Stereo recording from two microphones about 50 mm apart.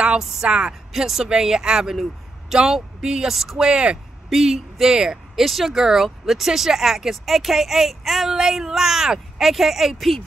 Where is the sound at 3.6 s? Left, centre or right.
Centre.